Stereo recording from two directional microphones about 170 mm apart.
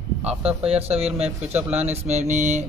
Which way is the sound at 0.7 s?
35° right (ahead or behind).